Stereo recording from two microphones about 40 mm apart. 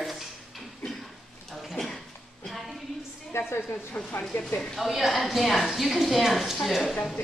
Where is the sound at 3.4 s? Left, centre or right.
Left.